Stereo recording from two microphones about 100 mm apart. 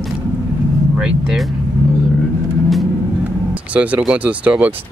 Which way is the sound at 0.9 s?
5° right (ahead or behind).